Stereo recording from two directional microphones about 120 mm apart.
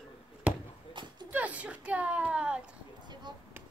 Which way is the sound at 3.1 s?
40° right (ahead or behind).